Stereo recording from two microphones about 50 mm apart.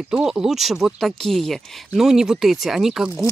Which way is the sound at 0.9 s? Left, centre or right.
Centre.